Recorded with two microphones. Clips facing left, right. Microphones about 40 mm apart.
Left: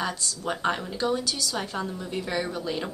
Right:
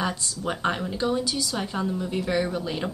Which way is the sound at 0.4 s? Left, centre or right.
Centre.